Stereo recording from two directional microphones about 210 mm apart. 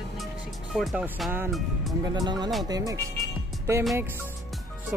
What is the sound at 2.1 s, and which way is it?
Speech, 20° right (ahead or behind).